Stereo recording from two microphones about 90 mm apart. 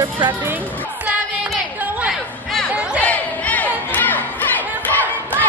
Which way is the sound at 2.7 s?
15° right (ahead or behind).